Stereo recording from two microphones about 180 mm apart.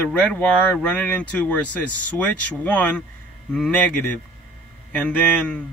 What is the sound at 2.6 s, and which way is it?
Speech, 5° left (ahead or behind).